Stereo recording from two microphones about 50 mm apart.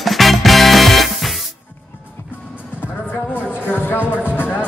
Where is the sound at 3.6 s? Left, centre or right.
Left.